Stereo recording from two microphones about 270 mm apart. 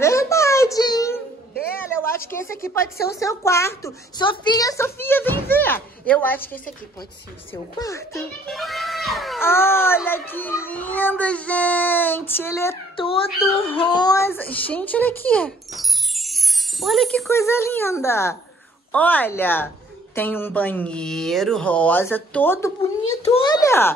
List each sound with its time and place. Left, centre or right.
0.0 s a sound: centre
2.3 s speech: centre
8.5 s speech: centre
22.8 s speech: left